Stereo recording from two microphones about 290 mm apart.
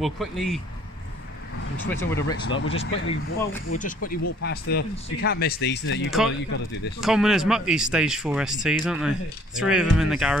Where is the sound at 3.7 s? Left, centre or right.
Left.